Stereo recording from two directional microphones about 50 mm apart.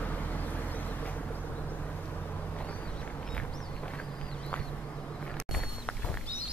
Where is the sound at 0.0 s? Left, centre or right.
Left.